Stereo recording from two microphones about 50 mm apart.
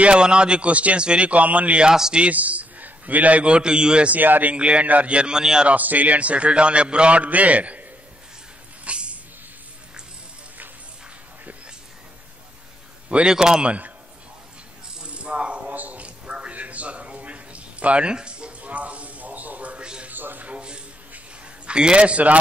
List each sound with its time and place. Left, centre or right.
0.0 s a man's voice: right
1.9 s a man's voice: centre
2.2 s a man's voice: right
4.2 s speech: right
4.6 s a man's voice: right
5.7 s a man's voice: right
8.8 s a sound: right
13.1 s a man's voice: centre
13.7 s a man's voice: right
15.0 s a sound: right
20.1 s a sound: right
21.6 s a man's voice: centre